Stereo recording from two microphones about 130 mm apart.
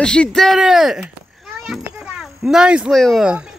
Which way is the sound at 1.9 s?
5° right (ahead or behind).